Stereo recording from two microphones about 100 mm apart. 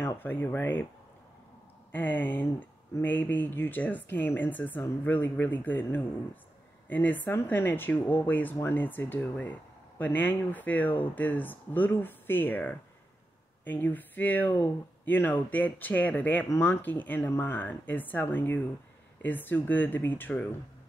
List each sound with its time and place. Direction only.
0.0 s speech: 20° left (ahead or behind)
1.9 s speech: 20° left (ahead or behind)